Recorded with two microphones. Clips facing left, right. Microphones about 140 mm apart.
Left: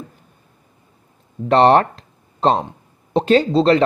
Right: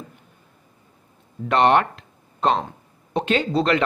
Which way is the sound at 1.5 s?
35° left (ahead or behind).